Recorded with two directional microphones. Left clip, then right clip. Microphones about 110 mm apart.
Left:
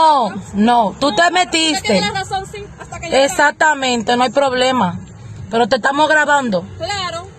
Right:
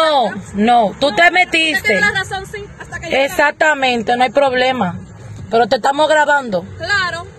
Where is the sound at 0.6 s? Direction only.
25° left (ahead or behind).